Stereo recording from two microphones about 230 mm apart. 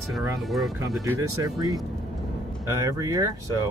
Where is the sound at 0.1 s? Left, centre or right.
Centre.